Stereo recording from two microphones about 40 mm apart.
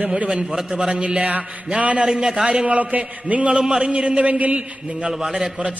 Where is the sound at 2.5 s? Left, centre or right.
Right.